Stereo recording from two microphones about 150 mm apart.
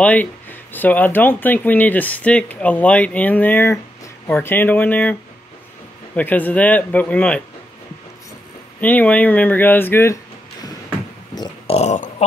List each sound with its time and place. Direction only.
0.0 s speech: 10° left (ahead or behind)
6.1 s speech: 10° left (ahead or behind)
8.8 s speech: 10° left (ahead or behind)
11.6 s speech: 45° left (ahead or behind)